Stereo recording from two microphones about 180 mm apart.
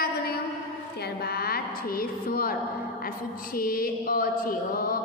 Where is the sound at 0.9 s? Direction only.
60° left (ahead or behind).